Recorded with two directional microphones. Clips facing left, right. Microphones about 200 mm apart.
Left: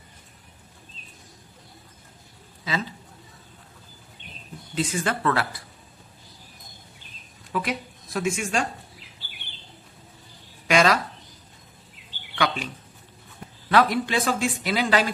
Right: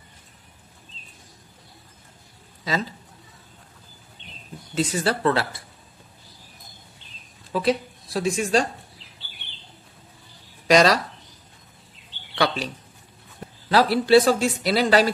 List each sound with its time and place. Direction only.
2.6 s a man's voice: 40° right (ahead or behind)
4.7 s speech: 35° right (ahead or behind)
7.5 s speech: 30° right (ahead or behind)
10.7 s a sound: 35° right (ahead or behind)
12.4 s bird: 35° right (ahead or behind)
13.7 s speech: 35° right (ahead or behind)